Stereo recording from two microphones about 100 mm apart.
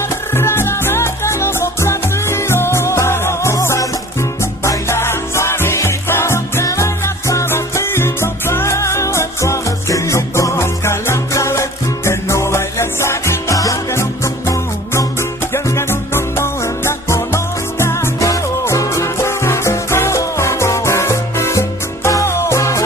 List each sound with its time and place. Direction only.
0.3 s music: 25° left (ahead or behind)